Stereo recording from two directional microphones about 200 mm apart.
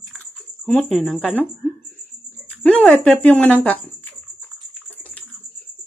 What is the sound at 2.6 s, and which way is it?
Speech, 10° left (ahead or behind).